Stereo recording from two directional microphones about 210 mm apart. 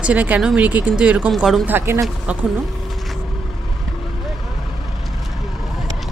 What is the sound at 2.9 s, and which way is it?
Vehicle, centre (ahead or behind).